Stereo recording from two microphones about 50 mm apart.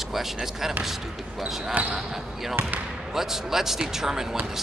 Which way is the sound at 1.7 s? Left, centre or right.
Right.